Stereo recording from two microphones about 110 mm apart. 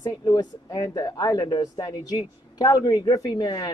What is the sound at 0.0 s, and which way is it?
Speech, 40° left (ahead or behind).